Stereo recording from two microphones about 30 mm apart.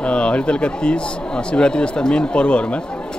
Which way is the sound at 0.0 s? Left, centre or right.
Left.